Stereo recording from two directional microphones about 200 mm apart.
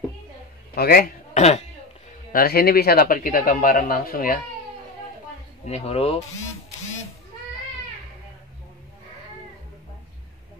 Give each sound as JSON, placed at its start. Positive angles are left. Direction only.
{"t": 0.7, "sound": "speech", "side_deg": 50}
{"t": 1.3, "sound": "speech", "side_deg": 35}
{"t": 2.3, "sound": "speech", "side_deg": 50}
{"t": 5.7, "sound": "speech", "side_deg": 30}